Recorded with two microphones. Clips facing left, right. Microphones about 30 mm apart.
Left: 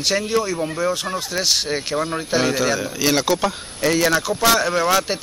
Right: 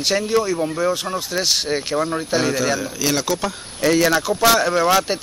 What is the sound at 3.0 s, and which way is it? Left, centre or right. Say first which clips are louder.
Speech: left 5 dB; centre.